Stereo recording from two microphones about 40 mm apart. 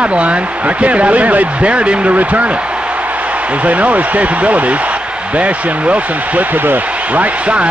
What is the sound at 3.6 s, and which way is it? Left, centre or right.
Speech, right.